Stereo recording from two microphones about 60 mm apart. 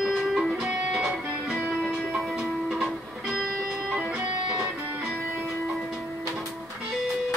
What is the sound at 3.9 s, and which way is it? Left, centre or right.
Music, centre.